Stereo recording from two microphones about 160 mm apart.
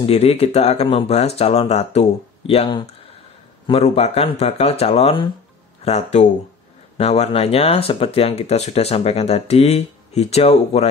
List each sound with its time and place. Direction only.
0.0 s speech: 40° left (ahead or behind)